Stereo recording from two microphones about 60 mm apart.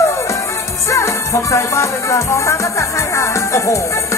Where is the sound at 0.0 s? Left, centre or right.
Left.